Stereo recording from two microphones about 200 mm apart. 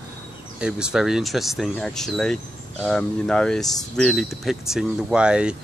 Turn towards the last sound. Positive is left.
turn(degrees=-5)  # may be behind; listen again after turning